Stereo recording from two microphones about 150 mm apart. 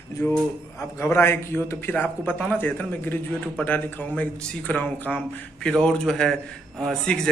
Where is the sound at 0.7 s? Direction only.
20° left (ahead or behind).